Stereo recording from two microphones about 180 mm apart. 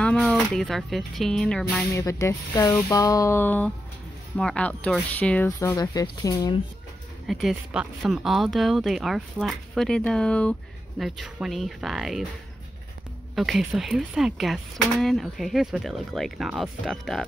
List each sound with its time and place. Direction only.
0.0 s speech: 5° left (ahead or behind)
2.0 s speech: 15° left (ahead or behind)
7.2 s speech: centre (ahead or behind)
13.3 s speech: centre (ahead or behind)